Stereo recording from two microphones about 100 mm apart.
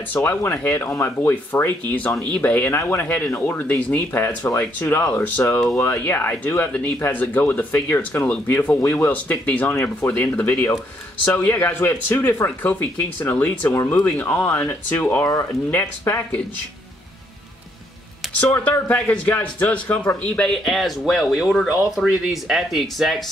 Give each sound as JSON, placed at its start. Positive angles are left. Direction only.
{"t": 0.1, "sound": "speech", "side_deg": 25}
{"t": 18.3, "sound": "speech", "side_deg": 15}
{"t": 20.6, "sound": "speech", "side_deg": 0}